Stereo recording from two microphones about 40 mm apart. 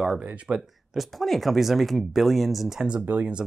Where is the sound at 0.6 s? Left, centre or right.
Centre.